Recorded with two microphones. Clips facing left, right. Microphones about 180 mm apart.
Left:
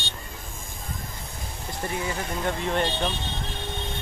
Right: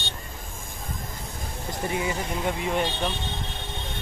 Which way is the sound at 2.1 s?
10° right (ahead or behind).